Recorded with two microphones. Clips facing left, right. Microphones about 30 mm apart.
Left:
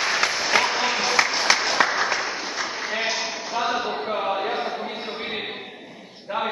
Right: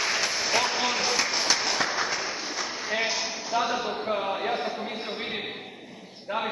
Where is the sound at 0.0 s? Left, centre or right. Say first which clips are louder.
Left 4 dB; left.